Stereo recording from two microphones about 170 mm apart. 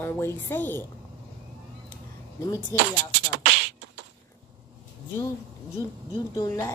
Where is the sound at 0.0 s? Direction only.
15° left (ahead or behind).